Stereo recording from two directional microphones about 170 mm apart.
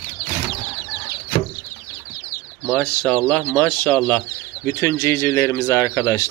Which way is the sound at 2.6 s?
5° left (ahead or behind).